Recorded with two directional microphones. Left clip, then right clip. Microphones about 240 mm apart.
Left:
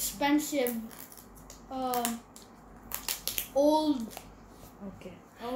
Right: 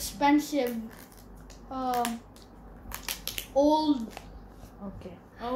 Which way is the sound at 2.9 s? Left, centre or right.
Centre.